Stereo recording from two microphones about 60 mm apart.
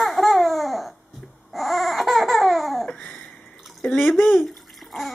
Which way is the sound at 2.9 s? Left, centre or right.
Centre.